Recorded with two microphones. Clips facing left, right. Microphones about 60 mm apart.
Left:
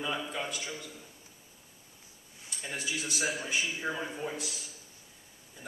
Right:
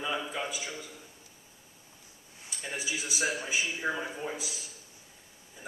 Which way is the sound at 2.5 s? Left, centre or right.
Centre.